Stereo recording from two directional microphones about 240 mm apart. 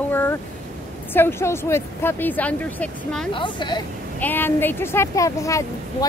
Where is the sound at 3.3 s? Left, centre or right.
Centre.